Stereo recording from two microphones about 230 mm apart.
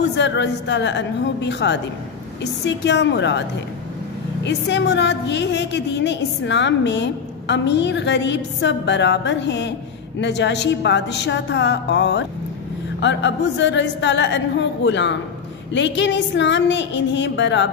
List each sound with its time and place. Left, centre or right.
0.0 s a woman's voice: left
4.5 s a woman's voice: left